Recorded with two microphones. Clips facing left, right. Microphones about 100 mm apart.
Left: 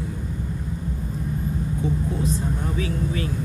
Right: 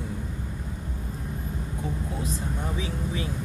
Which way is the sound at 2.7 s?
20° right (ahead or behind).